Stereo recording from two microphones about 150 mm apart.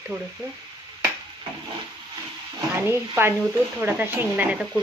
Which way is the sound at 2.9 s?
15° right (ahead or behind).